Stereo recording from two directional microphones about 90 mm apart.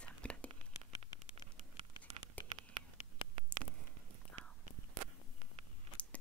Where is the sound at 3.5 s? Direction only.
15° left (ahead or behind).